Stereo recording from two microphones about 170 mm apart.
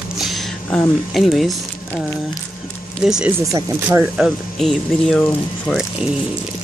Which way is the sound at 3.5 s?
15° right (ahead or behind).